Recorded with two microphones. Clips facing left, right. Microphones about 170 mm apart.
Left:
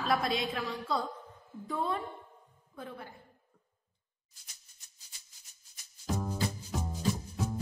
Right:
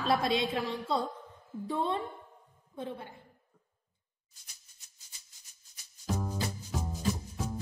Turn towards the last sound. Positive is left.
turn(degrees=0)  # may be behind; listen again after turning